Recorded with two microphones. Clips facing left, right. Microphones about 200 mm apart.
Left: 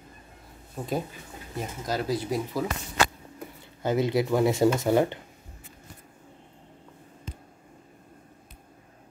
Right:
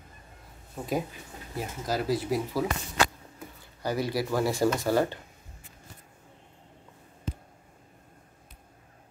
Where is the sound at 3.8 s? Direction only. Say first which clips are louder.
Left 4 dB; 20° left (ahead or behind).